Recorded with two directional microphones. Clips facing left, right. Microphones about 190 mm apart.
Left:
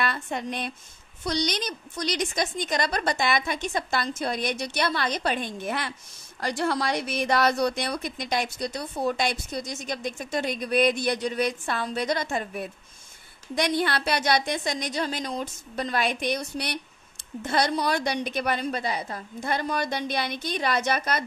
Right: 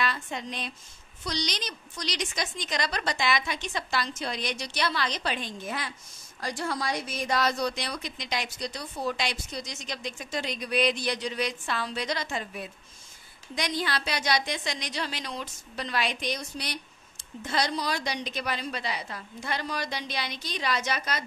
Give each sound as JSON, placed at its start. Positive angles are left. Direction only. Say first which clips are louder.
{"t": 0.0, "sound": "a woman's voice", "louder": "left 3 dB", "side_deg": 55}